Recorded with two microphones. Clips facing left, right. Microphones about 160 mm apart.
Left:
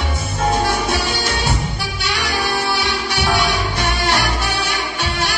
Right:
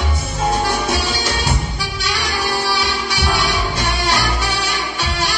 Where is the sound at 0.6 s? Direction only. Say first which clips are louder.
Even; 55° left (ahead or behind).